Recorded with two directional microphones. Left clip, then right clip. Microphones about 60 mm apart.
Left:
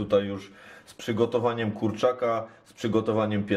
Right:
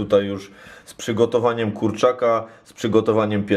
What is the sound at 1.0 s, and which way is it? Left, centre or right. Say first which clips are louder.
Speech: right 7 dB; right.